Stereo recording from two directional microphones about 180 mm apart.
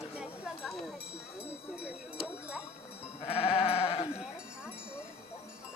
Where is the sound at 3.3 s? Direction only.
30° left (ahead or behind).